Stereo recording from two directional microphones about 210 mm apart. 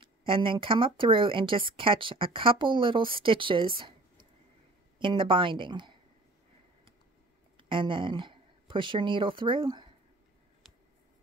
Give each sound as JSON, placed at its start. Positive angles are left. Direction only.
{"t": 0.0, "sound": "speech", "side_deg": -25}
{"t": 7.5, "sound": "speech", "side_deg": -25}
{"t": 10.6, "sound": "a sound", "side_deg": 0}